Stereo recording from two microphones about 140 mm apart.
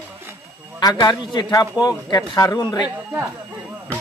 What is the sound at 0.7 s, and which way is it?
Speech, 30° left (ahead or behind).